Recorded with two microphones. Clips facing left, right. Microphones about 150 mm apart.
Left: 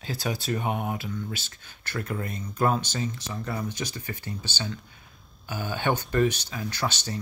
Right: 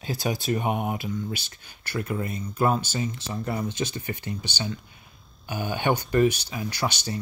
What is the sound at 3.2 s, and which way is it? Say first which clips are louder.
Speech: right 3 dB; 25° right (ahead or behind).